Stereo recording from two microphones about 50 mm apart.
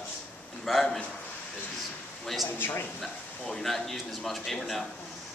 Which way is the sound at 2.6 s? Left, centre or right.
Left.